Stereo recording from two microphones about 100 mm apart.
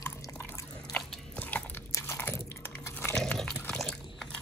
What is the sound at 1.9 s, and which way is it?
Biting, 25° left (ahead or behind).